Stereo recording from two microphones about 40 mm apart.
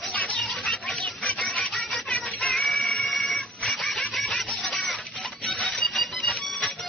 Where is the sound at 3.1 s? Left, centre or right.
Centre.